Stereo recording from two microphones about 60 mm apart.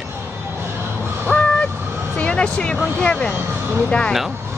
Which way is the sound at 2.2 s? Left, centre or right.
Centre.